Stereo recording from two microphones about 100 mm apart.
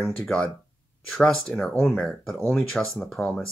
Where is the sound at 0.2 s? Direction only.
10° left (ahead or behind).